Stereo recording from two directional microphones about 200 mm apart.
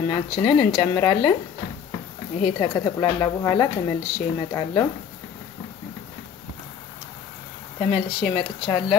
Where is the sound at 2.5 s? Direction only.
20° left (ahead or behind).